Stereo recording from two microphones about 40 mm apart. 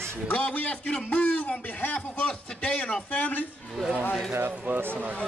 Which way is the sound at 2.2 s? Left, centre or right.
Left.